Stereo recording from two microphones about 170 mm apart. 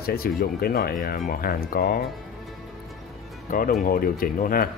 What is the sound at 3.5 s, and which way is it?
Speech, 55° left (ahead or behind).